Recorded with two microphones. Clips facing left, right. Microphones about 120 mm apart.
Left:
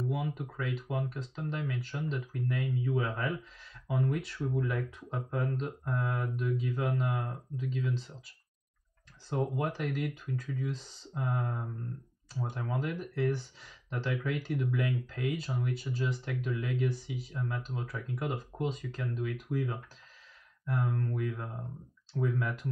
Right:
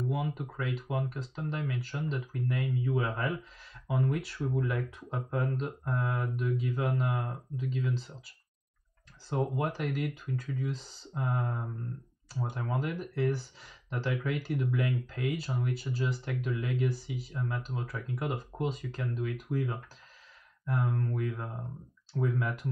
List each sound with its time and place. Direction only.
0.0 s speech: 5° right (ahead or behind)
9.3 s speech: 5° right (ahead or behind)